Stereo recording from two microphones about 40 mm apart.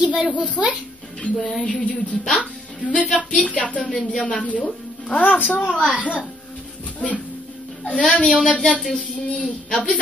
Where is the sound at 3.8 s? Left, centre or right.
Centre.